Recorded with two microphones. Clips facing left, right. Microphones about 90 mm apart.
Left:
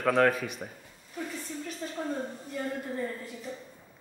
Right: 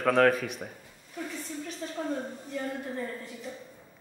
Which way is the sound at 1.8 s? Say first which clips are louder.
Even; 5° left (ahead or behind).